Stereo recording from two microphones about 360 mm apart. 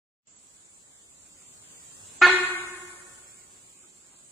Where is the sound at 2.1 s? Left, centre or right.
Centre.